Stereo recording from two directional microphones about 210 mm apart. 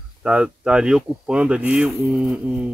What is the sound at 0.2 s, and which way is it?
Speech, 5° right (ahead or behind).